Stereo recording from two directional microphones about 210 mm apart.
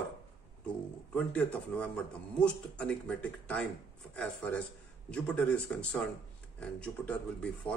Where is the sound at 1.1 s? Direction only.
5° left (ahead or behind).